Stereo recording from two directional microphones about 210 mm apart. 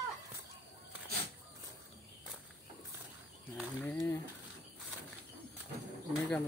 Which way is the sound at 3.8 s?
15° left (ahead or behind).